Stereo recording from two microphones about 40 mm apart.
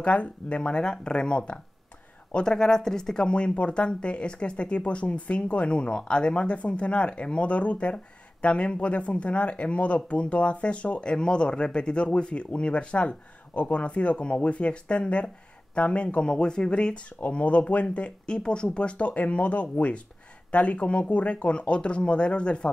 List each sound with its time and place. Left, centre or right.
0.0 s speech: left
17.2 s speech: left